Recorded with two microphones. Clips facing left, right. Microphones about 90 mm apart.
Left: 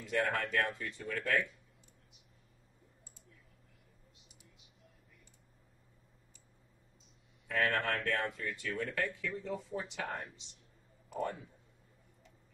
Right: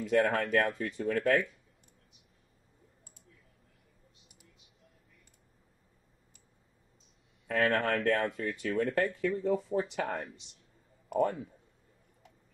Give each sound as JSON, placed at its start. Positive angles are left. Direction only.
{"t": 0.1, "sound": "speech", "side_deg": -40}
{"t": 7.4, "sound": "speech", "side_deg": -40}